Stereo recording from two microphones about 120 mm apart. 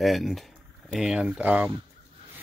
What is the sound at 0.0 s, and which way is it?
Speech, centre (ahead or behind).